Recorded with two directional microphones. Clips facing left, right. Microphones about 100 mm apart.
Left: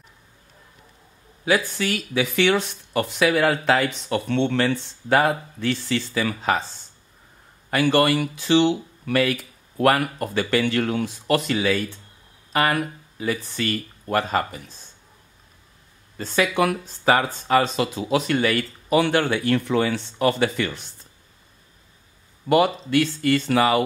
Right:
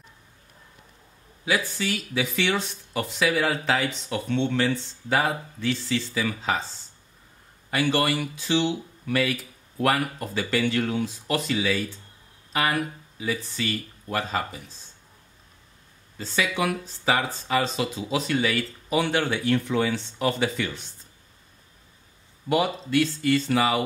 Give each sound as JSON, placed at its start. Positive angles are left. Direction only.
{"t": 1.4, "sound": "speech", "side_deg": 60}
{"t": 7.7, "sound": "speech", "side_deg": 60}
{"t": 16.2, "sound": "speech", "side_deg": 55}
{"t": 22.5, "sound": "speech", "side_deg": 65}